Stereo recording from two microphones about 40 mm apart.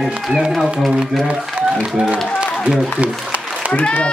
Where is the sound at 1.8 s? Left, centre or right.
Right.